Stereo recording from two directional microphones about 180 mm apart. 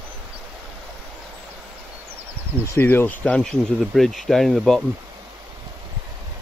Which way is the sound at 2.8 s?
10° left (ahead or behind).